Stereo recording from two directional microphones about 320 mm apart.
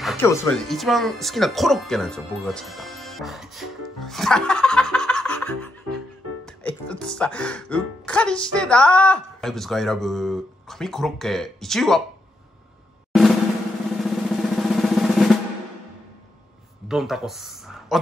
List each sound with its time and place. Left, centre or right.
0.0 s speech: centre
13.1 s drum: centre
13.9 s drum roll: centre
16.8 s speech: centre